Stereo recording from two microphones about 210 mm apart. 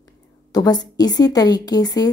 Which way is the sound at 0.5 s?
20° left (ahead or behind).